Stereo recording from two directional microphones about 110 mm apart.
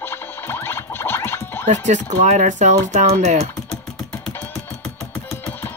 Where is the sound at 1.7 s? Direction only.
90° right.